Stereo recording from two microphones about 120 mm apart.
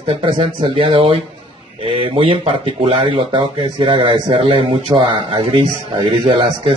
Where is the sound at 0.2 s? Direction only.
55° right (ahead or behind).